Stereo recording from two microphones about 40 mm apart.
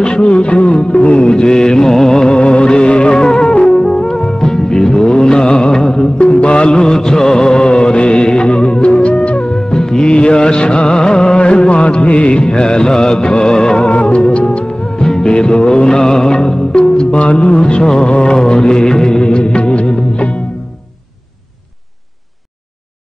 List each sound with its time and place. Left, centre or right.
0.0 s music: left
6.1 s music: left
15.0 s music: centre